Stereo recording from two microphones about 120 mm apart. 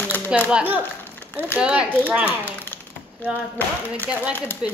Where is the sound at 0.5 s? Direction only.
15° right (ahead or behind).